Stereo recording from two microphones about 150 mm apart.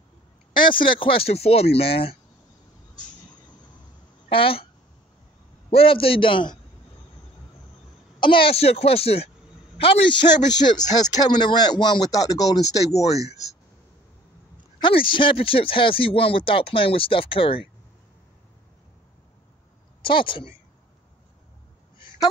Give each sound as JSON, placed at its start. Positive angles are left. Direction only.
{"t": 0.5, "sound": "speech", "side_deg": 35}
{"t": 4.3, "sound": "speech", "side_deg": 35}
{"t": 5.7, "sound": "speech", "side_deg": 40}
{"t": 8.2, "sound": "a man's voice", "side_deg": 35}
{"t": 14.8, "sound": "speech", "side_deg": 35}
{"t": 20.0, "sound": "speech", "side_deg": 35}
{"t": 21.9, "sound": "a sound", "side_deg": 35}